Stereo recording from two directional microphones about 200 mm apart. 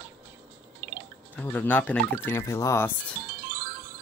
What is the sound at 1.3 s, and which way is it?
Speech, 10° left (ahead or behind).